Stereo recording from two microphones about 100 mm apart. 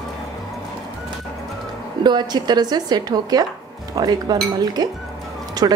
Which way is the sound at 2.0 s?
45° right (ahead or behind).